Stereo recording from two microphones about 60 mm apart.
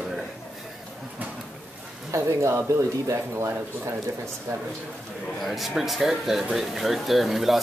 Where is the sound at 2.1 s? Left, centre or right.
Right.